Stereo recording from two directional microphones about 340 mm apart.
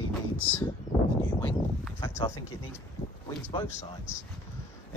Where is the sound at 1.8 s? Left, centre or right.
Centre.